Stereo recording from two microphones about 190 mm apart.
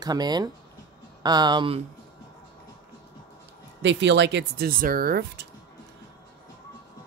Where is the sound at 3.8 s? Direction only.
70° right (ahead or behind); by 5.4 s 55° right (ahead or behind).